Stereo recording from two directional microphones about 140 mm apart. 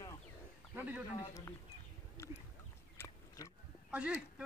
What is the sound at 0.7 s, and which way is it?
Speech, 10° right (ahead or behind).